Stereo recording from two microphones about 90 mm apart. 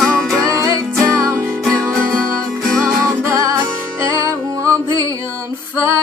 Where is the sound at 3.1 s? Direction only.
35° right (ahead or behind).